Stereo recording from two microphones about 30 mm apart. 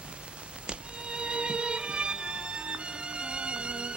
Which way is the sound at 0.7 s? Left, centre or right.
Right.